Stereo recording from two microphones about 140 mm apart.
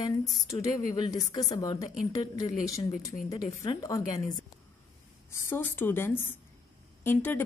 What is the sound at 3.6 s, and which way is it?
A woman's voice, 25° left (ahead or behind).